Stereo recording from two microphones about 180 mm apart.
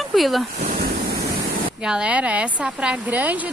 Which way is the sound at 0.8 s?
60° right (ahead or behind).